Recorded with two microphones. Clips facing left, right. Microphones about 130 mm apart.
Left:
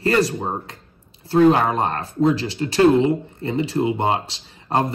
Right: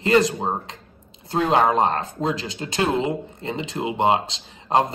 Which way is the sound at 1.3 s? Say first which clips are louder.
Left 3 dB; 25° right (ahead or behind).